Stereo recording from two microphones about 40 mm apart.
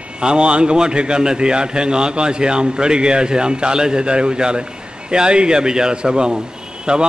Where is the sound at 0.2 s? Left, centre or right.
Right.